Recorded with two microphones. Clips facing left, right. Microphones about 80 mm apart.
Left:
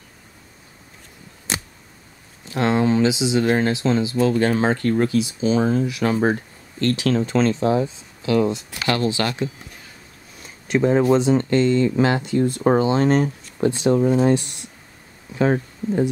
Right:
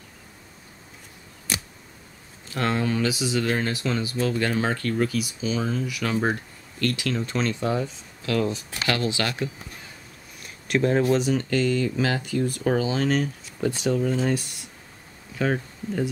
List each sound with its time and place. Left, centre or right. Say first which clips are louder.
2.4 s speech: left 6 dB; left
5.9 s speech: left 5 dB; left
7.2 s speech: left 6 dB; left
8.5 s speech: left 4 dB; left
10.7 s speech: left 4 dB; centre
11.1 s speech: left 5 dB; left
13.9 s speech: left 7 dB; left